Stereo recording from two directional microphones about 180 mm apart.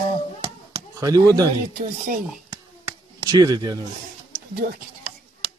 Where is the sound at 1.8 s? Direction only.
50° right (ahead or behind).